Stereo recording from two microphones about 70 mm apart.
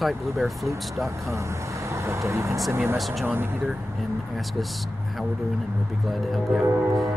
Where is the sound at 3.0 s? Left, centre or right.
Centre.